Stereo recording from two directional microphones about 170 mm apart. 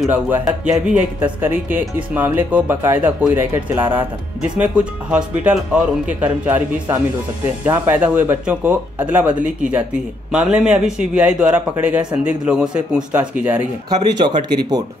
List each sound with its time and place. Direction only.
0.1 s a man's voice: 10° right (ahead or behind)
14.5 s speech: 25° right (ahead or behind)